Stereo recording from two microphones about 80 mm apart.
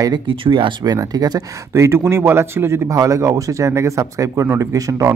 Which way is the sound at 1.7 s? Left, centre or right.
Right.